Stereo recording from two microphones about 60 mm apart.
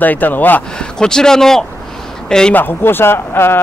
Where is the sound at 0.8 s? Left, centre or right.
Centre.